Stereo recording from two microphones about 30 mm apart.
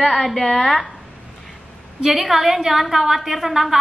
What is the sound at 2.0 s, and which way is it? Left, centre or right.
A woman's voice, centre.